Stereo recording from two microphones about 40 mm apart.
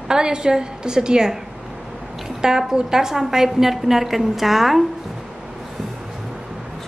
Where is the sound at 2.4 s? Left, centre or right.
Centre.